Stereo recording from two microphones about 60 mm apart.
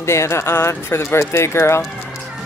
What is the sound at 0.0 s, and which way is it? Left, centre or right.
Speech, left.